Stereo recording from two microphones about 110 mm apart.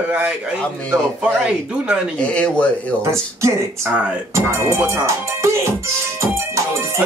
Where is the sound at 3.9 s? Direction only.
10° right (ahead or behind).